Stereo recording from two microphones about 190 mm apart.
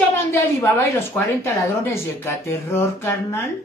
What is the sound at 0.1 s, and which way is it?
A woman's voice, 15° left (ahead or behind).